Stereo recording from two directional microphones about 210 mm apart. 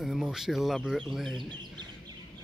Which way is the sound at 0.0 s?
Centre (ahead or behind).